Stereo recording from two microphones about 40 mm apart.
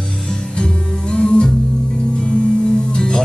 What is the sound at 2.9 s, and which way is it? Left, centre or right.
Music, centre.